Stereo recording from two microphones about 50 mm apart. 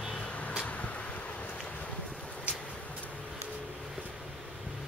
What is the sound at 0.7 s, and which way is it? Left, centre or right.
Vehicle, left.